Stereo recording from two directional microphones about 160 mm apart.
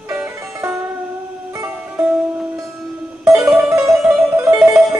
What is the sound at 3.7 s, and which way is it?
Music, centre (ahead or behind).